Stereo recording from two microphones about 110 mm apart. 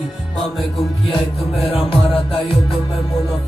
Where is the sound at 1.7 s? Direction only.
55° left (ahead or behind).